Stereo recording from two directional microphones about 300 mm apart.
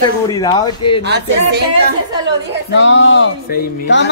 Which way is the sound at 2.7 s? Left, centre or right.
Left.